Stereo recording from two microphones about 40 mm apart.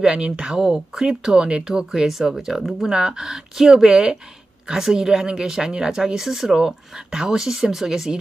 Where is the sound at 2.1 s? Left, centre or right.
Centre.